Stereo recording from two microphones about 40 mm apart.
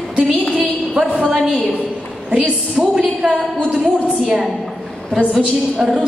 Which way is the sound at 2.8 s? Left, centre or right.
Centre.